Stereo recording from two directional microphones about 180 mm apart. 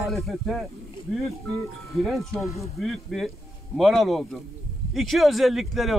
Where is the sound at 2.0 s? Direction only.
Centre (ahead or behind).